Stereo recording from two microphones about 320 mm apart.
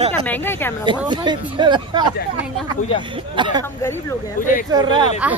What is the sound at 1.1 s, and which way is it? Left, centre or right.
Speech, centre.